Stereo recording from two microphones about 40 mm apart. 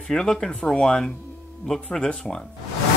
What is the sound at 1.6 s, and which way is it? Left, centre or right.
Speech, centre.